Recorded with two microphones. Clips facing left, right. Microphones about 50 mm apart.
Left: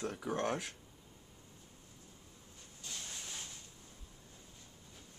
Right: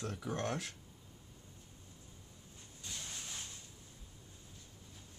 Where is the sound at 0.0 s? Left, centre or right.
Centre.